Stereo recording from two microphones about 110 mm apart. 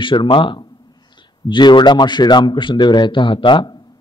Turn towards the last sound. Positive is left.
turn(degrees=45)  # may be behind; listen again after turning